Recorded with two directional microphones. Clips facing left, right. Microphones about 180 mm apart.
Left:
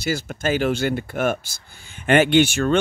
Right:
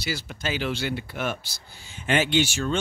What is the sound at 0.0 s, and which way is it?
Speech, 50° left (ahead or behind).